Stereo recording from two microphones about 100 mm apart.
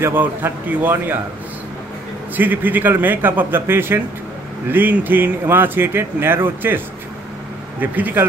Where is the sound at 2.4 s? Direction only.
20° right (ahead or behind).